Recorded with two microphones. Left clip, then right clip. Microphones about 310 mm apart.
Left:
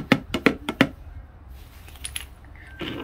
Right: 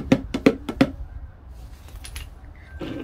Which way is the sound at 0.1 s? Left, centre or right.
Centre.